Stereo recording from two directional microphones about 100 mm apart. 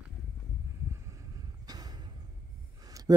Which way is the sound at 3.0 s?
35° right (ahead or behind).